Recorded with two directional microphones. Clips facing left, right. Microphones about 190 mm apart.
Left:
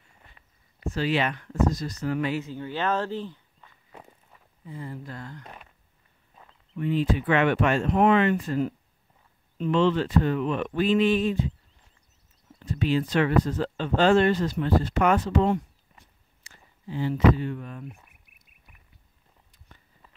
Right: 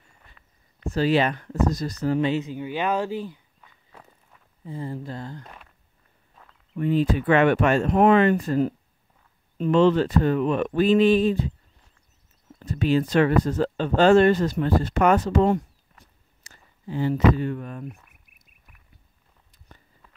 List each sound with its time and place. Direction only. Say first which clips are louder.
0.9 s speech: right 5 dB; 40° right (ahead or behind); by 3.3 s 10° right (ahead or behind)
3.6 s walk: left 3 dB; 5° left (ahead or behind)
4.6 s speech: right 5 dB; 30° right (ahead or behind)
6.7 s speech: right 3 dB; 45° right (ahead or behind)
12.5 s speech: right 3 dB; 45° right (ahead or behind)
16.0 s a sound: right 2 dB; 45° right (ahead or behind)